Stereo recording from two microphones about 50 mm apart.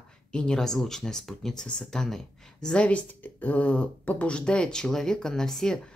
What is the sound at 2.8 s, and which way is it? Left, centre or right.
Speech, left.